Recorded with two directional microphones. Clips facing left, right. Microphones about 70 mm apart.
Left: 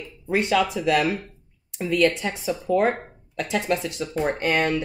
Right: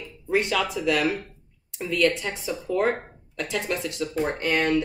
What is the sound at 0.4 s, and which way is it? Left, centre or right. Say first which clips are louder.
A woman's voice: left 5 dB; centre.